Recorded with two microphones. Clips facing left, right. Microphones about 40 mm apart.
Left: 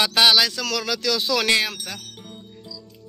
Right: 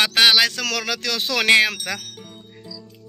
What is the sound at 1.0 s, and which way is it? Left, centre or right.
Speech, right.